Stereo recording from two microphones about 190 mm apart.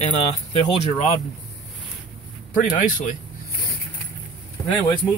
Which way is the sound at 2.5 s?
40° left (ahead or behind).